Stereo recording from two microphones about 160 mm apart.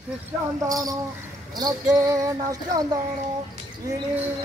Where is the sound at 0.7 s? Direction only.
20° right (ahead or behind).